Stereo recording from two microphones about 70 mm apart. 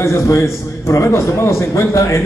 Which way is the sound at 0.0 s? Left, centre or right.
Left.